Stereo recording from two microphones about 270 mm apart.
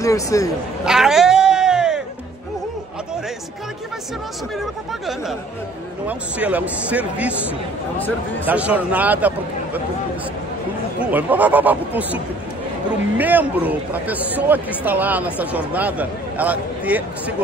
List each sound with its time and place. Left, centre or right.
0.0 s speech: centre
0.8 s cat: centre
4.6 s speech: centre
11.0 s speech: centre
13.2 s speech: centre